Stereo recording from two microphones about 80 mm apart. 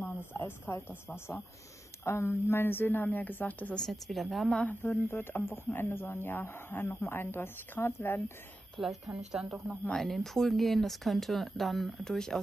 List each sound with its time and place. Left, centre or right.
0.0 s a sound: left
1.0 s speech: left
3.8 s speech: centre
4.5 s speech: centre
8.7 s speech: centre